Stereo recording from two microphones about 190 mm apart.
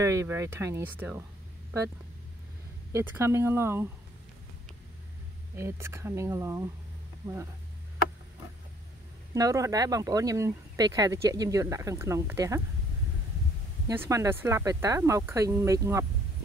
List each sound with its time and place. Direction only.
0.0 s speech: 15° right (ahead or behind)
2.9 s speech: 15° right (ahead or behind)
5.6 s speech: 15° right (ahead or behind)
9.3 s speech: 15° right (ahead or behind)
13.8 s speech: 15° right (ahead or behind)